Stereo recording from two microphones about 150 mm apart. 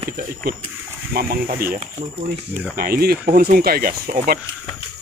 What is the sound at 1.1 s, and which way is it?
Speech, 80° right.